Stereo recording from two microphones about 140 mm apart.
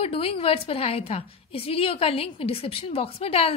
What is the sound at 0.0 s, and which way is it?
A woman's voice, 45° left (ahead or behind).